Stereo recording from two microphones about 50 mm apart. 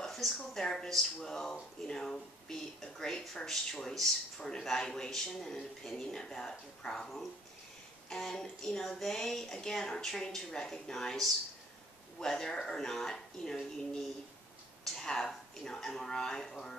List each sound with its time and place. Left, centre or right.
0.0 s speech: centre
8.1 s speech: centre